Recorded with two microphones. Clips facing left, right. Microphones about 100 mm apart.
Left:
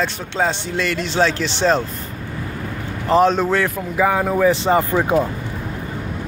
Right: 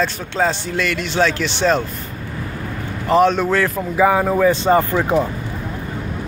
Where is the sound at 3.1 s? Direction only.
30° left (ahead or behind).